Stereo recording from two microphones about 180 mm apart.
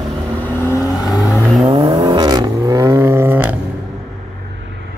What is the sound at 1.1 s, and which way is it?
Vehicle, centre (ahead or behind).